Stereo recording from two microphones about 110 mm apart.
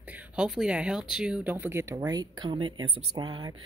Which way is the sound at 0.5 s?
5° right (ahead or behind).